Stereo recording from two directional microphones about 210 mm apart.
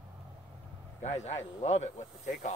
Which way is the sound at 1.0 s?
30° left (ahead or behind).